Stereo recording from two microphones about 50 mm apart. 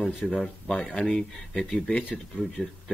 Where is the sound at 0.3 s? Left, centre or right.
Centre.